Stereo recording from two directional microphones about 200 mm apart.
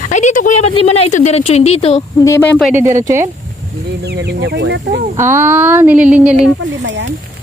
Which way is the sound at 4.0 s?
55° right (ahead or behind).